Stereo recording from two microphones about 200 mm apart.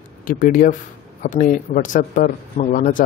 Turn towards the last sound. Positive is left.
turn(degrees=40)  # may be behind; listen again after turning